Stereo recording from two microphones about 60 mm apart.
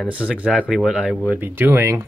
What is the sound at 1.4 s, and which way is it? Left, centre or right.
Speech, right.